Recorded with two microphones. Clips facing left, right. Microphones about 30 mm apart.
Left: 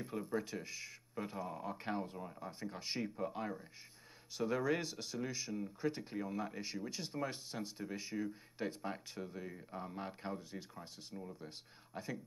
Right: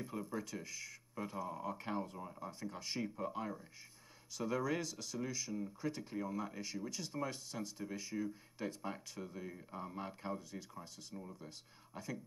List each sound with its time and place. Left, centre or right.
0.0 s speech: left